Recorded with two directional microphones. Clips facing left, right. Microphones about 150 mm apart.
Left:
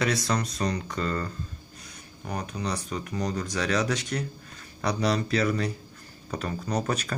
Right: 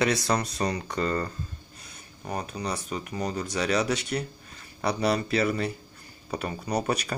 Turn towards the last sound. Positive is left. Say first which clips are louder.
# right 1 dB
turn(degrees=-10)  # may be behind; listen again after turning